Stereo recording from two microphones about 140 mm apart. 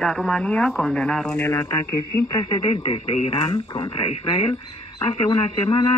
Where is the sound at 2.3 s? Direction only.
30° left (ahead or behind).